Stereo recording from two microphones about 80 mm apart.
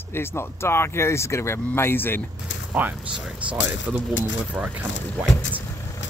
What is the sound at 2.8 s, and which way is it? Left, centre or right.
Speech, right.